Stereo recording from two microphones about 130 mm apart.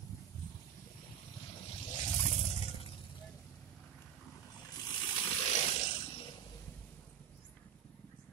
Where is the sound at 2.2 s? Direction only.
55° left (ahead or behind).